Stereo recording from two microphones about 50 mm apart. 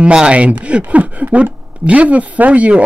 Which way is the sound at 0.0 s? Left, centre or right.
Centre.